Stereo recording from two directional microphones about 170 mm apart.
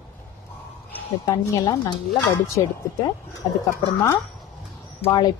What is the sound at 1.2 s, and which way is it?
Speech, 20° left (ahead or behind).